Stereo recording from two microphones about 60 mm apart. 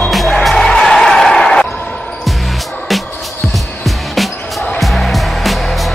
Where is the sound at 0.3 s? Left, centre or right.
Centre.